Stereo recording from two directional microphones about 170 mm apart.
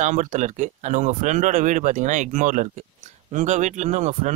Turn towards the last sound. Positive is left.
turn(degrees=-45)  # may be behind; listen again after turning